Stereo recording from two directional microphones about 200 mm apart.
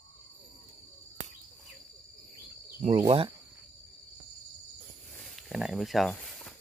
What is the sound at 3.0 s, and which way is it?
Speech, 25° right (ahead or behind).